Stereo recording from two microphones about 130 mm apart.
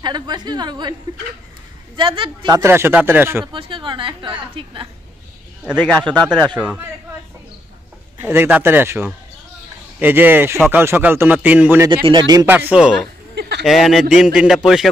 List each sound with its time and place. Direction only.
0.0 s a woman's voice: 35° right (ahead or behind)
2.0 s a woman's voice: 40° right (ahead or behind)
2.5 s speech: 20° right (ahead or behind)
3.5 s a woman's voice: 40° right (ahead or behind)
5.8 s a man's voice: 10° left (ahead or behind)
8.2 s speech: 15° right (ahead or behind)
11.9 s a woman's voice: 35° right (ahead or behind)
12.4 s speech: 15° right (ahead or behind)
13.7 s a man's voice: centre (ahead or behind)